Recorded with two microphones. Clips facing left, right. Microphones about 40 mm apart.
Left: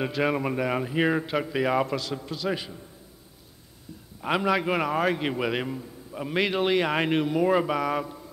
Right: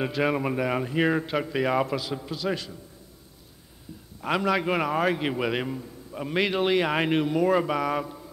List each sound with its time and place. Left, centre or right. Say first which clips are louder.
0.0 s a man's voice: even; centre
2.5 s a man's voice: even; centre
4.2 s a man's voice: even; centre